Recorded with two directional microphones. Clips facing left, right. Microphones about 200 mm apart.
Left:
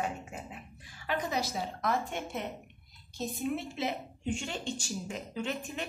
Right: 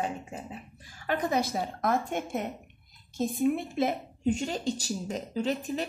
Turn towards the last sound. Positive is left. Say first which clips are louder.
# right 6 dB
turn(degrees=-35)  # may be behind; listen again after turning